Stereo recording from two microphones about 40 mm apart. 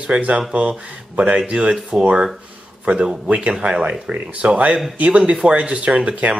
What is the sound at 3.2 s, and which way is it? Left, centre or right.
Speech, right.